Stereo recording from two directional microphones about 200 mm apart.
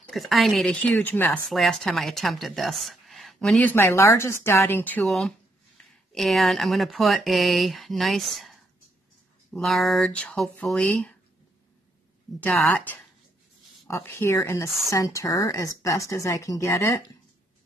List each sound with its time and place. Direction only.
0.1 s speech: centre (ahead or behind)
12.4 s a woman's voice: 5° left (ahead or behind)